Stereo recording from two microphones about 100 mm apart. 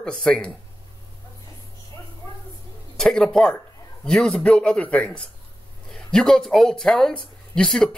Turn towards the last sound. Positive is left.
turn(degrees=5)  # may be behind; listen again after turning